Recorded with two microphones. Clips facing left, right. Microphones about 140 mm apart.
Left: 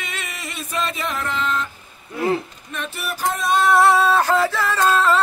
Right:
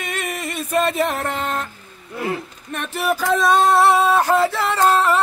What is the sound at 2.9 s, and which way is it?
Music, 90° right.